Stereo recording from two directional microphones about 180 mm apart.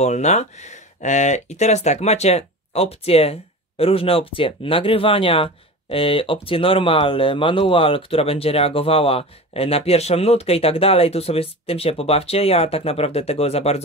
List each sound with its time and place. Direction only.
0.0 s speech: 40° left (ahead or behind)